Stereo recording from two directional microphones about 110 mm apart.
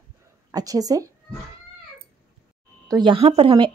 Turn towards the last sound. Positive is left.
turn(degrees=-55)  # may be behind; listen again after turning